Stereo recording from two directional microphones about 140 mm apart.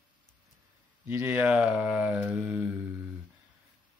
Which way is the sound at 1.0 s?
15° right (ahead or behind).